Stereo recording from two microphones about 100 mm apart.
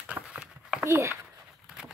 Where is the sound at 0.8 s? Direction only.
25° right (ahead or behind).